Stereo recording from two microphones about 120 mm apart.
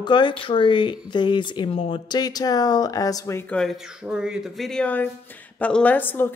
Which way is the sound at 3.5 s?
5° left (ahead or behind).